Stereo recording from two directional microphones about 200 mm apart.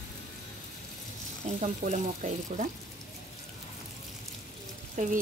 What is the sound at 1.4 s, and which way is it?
Speech, 35° right (ahead or behind).